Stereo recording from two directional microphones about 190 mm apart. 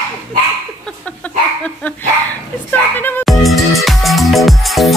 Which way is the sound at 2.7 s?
10° left (ahead or behind).